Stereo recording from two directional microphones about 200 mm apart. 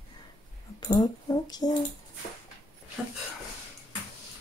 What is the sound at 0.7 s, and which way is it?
Speech, 20° left (ahead or behind).